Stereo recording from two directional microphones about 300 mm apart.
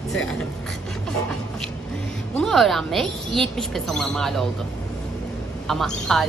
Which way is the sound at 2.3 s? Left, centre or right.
Centre.